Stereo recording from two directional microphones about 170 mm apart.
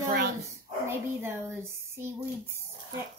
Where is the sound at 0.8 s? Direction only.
15° right (ahead or behind).